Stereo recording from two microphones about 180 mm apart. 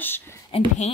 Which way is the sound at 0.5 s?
35° left (ahead or behind).